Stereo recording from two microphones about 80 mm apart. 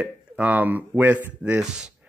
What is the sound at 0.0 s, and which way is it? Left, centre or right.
A man's voice, centre.